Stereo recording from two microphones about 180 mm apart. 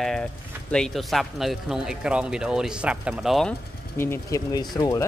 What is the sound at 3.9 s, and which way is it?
Speech, 15° left (ahead or behind).